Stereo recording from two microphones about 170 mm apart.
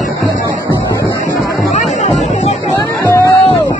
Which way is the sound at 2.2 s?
40° left (ahead or behind).